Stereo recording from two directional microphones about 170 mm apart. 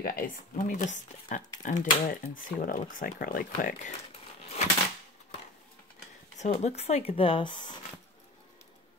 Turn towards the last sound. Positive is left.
turn(degrees=25)  # may be behind; listen again after turning